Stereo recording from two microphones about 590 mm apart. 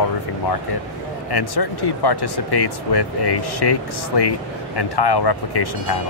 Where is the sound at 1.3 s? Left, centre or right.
Left.